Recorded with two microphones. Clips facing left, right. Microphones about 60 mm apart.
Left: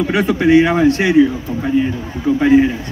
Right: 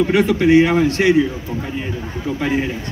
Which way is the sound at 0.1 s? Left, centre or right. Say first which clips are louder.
Left 3 dB; left.